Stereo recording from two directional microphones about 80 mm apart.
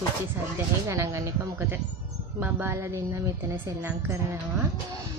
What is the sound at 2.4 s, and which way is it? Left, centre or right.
Speech, right.